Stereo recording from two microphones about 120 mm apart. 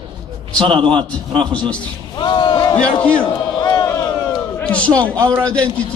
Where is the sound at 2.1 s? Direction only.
40° left (ahead or behind).